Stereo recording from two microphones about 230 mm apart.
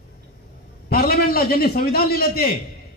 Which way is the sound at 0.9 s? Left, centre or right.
Left.